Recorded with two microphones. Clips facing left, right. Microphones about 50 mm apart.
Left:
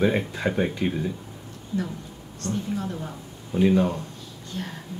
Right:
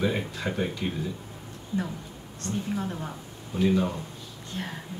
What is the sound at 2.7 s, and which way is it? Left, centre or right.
Speech, centre.